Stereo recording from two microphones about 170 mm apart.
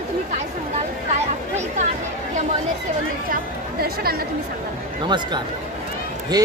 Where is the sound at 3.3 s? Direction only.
60° right (ahead or behind).